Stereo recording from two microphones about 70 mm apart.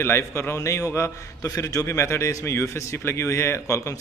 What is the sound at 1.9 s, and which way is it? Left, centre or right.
A man's voice, left.